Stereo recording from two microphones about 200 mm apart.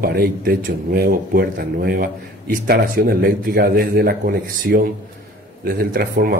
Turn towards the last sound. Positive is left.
turn(degrees=-50)  # may be behind; listen again after turning